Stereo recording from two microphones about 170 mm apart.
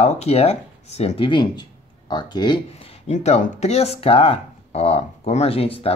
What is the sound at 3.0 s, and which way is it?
Speech, 40° left (ahead or behind).